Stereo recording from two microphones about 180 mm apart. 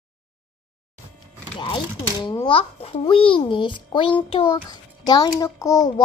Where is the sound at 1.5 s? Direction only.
30° left (ahead or behind).